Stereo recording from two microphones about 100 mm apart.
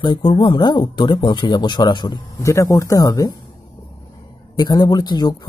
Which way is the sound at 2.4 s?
30° left (ahead or behind).